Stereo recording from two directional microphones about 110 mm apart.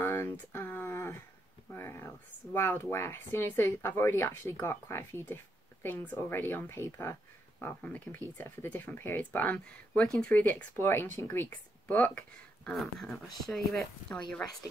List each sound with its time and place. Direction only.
0.0 s a sound: 20° left (ahead or behind)
1.7 s speech: 20° left (ahead or behind)
12.7 s speech: centre (ahead or behind)